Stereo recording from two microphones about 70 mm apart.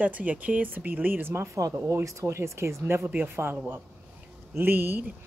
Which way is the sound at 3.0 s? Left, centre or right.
Right.